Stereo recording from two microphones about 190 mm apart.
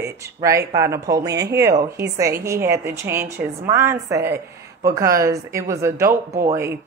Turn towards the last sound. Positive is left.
turn(degrees=-15)  # may be behind; listen again after turning